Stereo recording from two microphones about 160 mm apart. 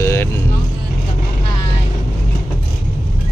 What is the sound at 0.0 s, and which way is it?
Vehicle, 15° left (ahead or behind).